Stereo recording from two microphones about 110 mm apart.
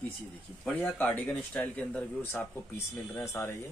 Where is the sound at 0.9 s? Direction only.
15° left (ahead or behind).